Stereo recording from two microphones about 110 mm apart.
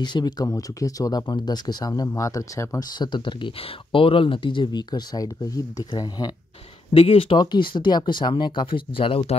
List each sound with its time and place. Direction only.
0.0 s speech: 40° left (ahead or behind)
3.0 s speech: 45° left (ahead or behind)
6.9 s speech: 60° left (ahead or behind)
7.3 s speech: 45° left (ahead or behind)